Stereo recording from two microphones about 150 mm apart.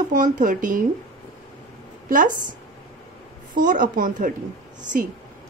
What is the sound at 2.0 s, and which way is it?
Speech, 60° right (ahead or behind).